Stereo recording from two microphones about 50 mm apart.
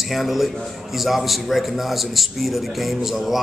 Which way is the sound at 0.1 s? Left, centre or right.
Centre.